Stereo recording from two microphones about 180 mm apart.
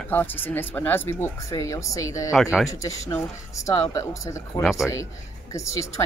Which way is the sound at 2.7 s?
15° left (ahead or behind).